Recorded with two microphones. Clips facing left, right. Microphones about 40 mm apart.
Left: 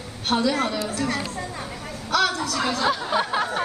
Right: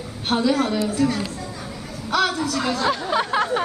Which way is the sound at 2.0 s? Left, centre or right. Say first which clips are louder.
Right 1 dB; centre.